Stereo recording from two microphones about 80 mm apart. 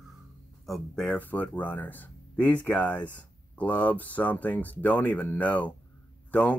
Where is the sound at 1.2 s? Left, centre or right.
Centre.